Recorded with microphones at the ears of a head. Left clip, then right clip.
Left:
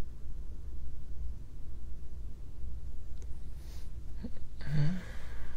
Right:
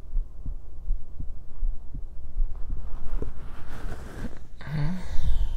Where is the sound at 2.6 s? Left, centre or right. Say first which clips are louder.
Right 10 dB; right.